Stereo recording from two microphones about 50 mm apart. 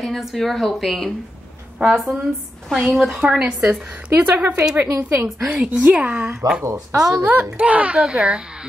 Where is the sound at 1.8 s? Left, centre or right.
Right.